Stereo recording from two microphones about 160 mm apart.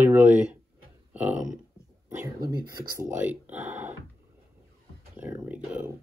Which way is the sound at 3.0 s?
10° right (ahead or behind).